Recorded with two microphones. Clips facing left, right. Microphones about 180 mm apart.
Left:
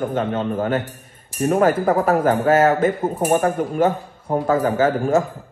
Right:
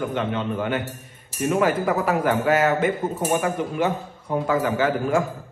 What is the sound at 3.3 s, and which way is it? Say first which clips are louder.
A man's voice: left 5 dB; 50° left (ahead or behind).